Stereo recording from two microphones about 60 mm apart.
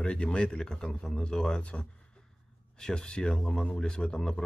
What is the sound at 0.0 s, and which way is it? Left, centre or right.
Speech, centre.